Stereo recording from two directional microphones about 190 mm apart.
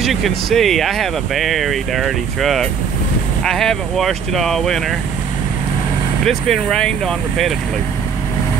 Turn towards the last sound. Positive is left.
turn(degrees=0)  # may be behind; listen again after turning